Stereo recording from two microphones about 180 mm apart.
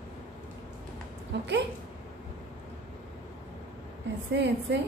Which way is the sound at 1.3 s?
75° right (ahead or behind).